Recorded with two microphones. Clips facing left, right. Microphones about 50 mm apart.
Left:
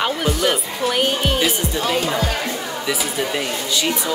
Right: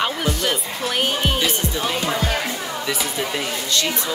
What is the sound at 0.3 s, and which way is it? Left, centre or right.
Speech, centre.